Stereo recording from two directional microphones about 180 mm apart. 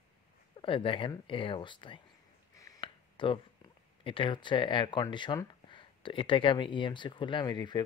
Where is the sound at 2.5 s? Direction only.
20° left (ahead or behind).